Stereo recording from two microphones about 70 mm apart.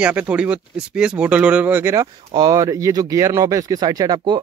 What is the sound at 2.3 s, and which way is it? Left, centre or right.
Speech, right.